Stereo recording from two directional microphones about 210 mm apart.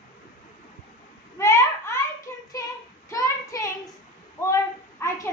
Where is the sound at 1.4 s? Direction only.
15° left (ahead or behind).